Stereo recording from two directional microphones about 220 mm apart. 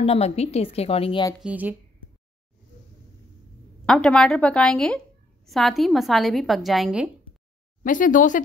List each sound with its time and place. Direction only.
0.0 s speech: 25° left (ahead or behind)
1.4 s a woman's voice: 5° right (ahead or behind)
3.8 s a woman's voice: 5° left (ahead or behind)
7.8 s speech: 35° left (ahead or behind)